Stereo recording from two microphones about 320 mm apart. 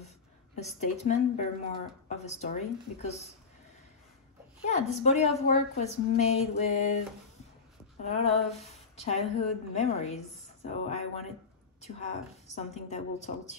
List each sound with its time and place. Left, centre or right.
0.6 s a woman's voice: left
4.6 s a woman's voice: left
8.0 s a woman's voice: centre